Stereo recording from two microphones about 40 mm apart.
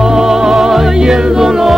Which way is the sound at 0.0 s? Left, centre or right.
Centre.